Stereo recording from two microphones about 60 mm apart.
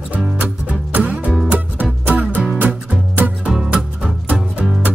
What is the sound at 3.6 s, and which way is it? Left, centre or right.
Music, centre.